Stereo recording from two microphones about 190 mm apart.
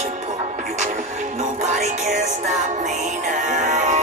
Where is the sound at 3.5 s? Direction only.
40° right (ahead or behind).